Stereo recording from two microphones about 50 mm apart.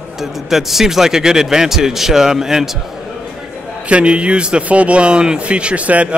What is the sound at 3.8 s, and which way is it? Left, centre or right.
Speech, right.